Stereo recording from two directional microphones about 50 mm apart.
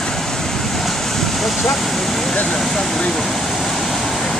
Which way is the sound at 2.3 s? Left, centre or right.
Left.